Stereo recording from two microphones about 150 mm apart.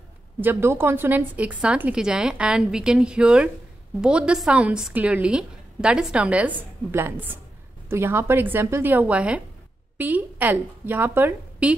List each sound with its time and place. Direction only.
0.4 s a woman's voice: 15° right (ahead or behind)